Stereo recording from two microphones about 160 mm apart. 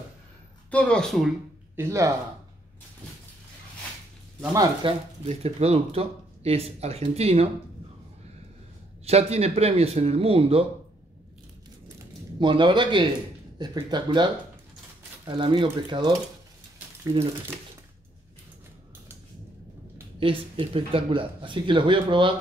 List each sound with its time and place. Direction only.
0.7 s speech: 5° left (ahead or behind)
1.8 s speech: 20° right (ahead or behind)
4.8 s speech: 40° right (ahead or behind)
9.0 s speech: 40° right (ahead or behind)
12.4 s speech: 30° right (ahead or behind)
20.2 s speech: 35° right (ahead or behind)